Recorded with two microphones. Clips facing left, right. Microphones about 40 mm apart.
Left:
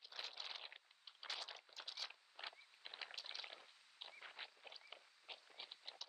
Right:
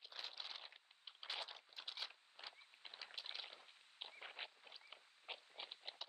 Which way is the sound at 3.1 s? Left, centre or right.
Right.